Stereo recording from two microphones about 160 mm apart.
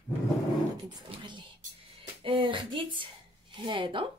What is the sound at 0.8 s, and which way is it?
Speech, 30° right (ahead or behind).